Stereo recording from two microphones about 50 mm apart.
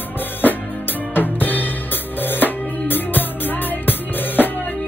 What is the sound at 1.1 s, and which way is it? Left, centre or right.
Drum kit, left.